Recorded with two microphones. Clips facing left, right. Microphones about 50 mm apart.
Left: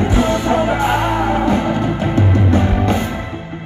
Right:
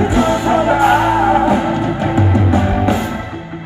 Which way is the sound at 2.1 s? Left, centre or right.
Centre.